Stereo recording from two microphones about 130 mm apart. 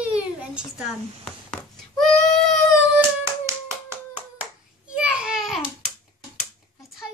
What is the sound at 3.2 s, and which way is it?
Clapping, 20° right (ahead or behind).